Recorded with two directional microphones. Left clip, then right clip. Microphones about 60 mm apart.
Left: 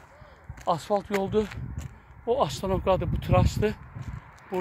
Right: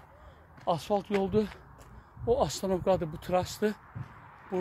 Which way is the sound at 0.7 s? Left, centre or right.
Centre.